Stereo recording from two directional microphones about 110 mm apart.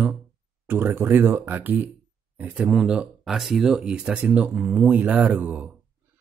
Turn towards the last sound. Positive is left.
turn(degrees=-15)  # may be behind; listen again after turning